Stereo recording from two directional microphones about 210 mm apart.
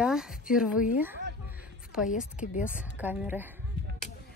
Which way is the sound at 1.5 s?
5° right (ahead or behind).